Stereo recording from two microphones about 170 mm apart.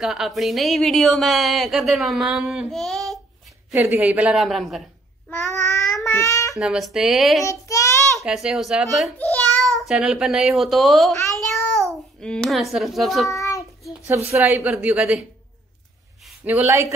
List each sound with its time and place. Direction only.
0.0 s a woman's voice: centre (ahead or behind)
3.7 s a woman's voice: 15° right (ahead or behind)
5.3 s child singing: 20° left (ahead or behind)
6.6 s a woman's voice: 5° right (ahead or behind)
7.4 s child singing: 20° left (ahead or behind)
8.3 s a woman's voice: 5° right (ahead or behind)
13.3 s child singing: 20° left (ahead or behind)
14.0 s a woman's voice: 15° right (ahead or behind)
16.3 s speech: 10° right (ahead or behind)